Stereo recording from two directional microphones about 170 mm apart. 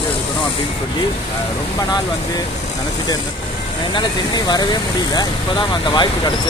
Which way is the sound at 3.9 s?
25° left (ahead or behind).